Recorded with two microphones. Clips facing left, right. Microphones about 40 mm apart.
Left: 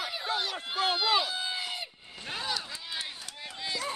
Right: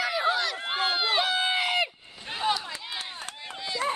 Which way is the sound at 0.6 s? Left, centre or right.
Right.